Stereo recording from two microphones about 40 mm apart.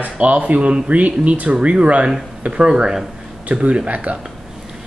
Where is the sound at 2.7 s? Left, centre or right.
Centre.